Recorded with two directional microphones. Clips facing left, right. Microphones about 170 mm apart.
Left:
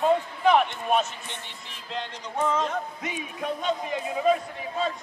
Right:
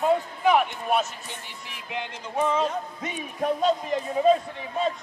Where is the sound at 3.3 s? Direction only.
40° right (ahead or behind).